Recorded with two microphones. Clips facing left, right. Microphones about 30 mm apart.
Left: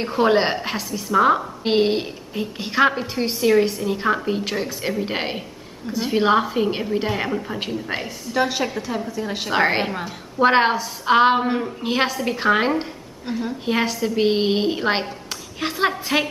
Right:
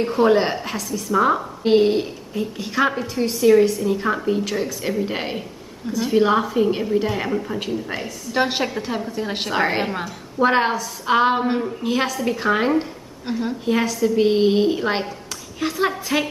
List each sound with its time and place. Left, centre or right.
0.2 s a woman's voice: left
7.2 s a woman's voice: centre
7.9 s a woman's voice: left
8.4 s a woman's voice: right
9.5 s a woman's voice: centre
13.3 s a woman's voice: centre
13.7 s a woman's voice: left